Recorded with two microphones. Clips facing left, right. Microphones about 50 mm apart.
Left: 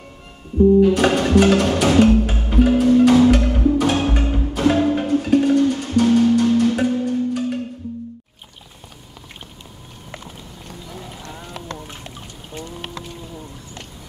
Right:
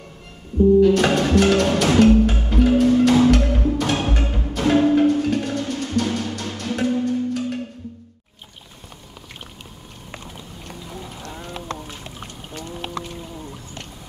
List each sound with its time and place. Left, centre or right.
0.7 s music: centre
1.7 s music: centre
2.0 s music: centre
12.5 s a sound: centre